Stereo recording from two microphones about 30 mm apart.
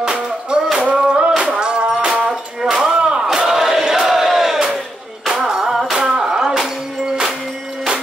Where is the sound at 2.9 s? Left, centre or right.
Right.